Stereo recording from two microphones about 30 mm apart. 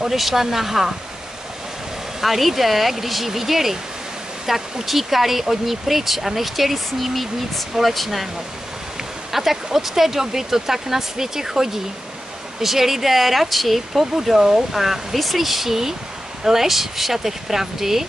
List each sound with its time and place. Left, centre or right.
0.1 s speech: centre
2.2 s speech: centre
9.3 s speech: centre